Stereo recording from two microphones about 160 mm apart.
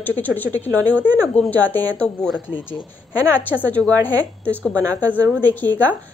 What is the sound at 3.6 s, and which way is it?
Speech, 10° left (ahead or behind).